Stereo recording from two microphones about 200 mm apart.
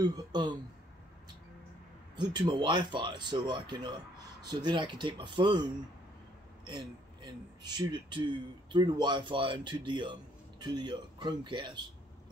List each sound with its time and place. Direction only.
0.0 s speech: 20° right (ahead or behind)
2.1 s speech: 25° right (ahead or behind)